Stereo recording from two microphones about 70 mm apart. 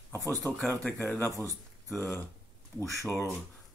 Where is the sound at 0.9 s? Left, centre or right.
Left.